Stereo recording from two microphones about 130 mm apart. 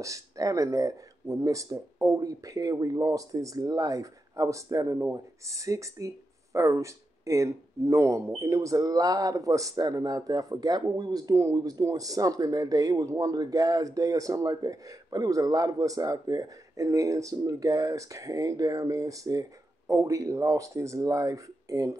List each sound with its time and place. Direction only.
0.0 s speech: 25° right (ahead or behind)